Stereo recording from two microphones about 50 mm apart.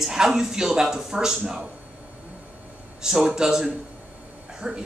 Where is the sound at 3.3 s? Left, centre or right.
Centre.